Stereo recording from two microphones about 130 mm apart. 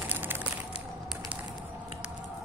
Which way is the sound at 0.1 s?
15° right (ahead or behind).